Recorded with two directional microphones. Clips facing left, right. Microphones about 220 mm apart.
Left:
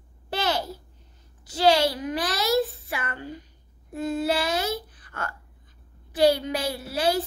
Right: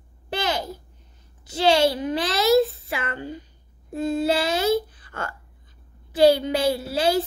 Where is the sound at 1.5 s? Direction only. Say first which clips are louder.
Right 2 dB; 25° right (ahead or behind).